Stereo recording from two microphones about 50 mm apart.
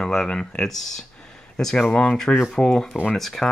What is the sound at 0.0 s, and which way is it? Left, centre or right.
Speech, centre.